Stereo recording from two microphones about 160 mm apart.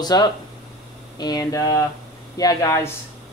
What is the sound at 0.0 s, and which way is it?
A man's voice, 25° left (ahead or behind).